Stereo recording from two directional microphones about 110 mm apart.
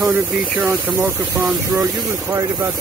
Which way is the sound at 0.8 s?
20° right (ahead or behind).